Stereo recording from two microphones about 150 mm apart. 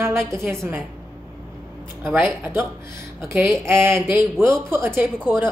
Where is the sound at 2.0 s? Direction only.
15° right (ahead or behind).